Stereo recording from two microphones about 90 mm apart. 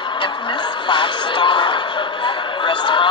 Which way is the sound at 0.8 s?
60° left (ahead or behind).